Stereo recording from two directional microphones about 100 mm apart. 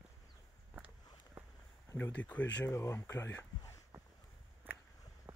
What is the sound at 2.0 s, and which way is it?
Speech, 15° left (ahead or behind).